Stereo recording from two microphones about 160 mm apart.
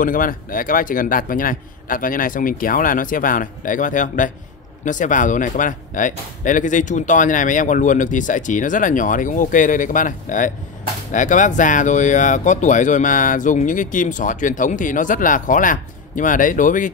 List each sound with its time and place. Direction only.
0.0 s a man's voice: 60° left (ahead or behind)